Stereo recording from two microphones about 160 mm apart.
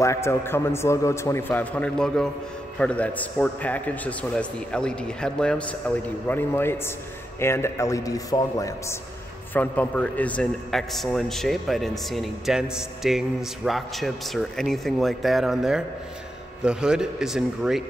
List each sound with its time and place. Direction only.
0.0 s a man's voice: 15° left (ahead or behind); by 17.8 s centre (ahead or behind)